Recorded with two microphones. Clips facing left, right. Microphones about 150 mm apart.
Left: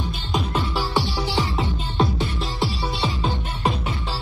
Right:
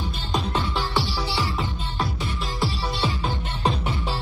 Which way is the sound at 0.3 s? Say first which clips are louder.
Left 1 dB; centre (ahead or behind).